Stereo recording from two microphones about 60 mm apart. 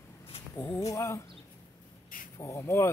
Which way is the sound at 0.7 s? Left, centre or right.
Left.